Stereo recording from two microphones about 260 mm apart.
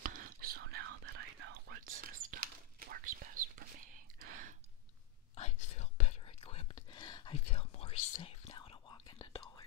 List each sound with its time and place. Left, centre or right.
0.0 s whispering: right
5.3 s whispering: left